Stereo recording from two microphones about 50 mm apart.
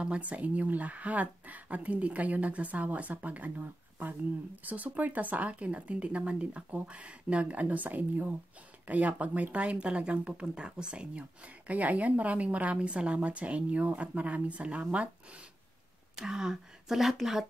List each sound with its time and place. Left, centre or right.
0.0 s speech: right
16.2 s a woman's voice: centre